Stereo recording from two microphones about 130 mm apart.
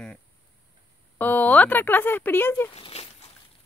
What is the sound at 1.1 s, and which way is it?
Speech, 15° left (ahead or behind).